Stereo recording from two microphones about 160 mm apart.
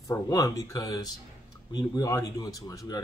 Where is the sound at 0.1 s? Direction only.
20° left (ahead or behind).